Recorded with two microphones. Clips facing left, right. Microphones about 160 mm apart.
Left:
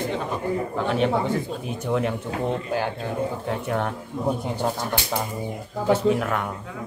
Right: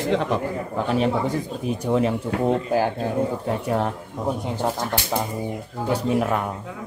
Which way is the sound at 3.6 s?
5° right (ahead or behind).